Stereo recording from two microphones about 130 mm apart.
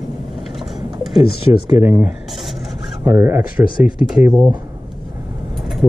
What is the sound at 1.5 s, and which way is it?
Speech, 25° right (ahead or behind).